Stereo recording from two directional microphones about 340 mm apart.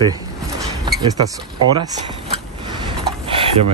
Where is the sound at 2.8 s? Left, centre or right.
Centre.